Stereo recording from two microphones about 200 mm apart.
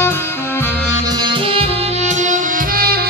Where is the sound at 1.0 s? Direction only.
20° right (ahead or behind).